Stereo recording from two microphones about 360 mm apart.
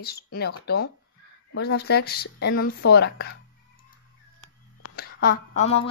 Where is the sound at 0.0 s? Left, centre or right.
Left.